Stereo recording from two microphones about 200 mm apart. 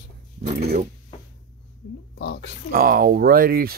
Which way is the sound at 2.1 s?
55° left (ahead or behind).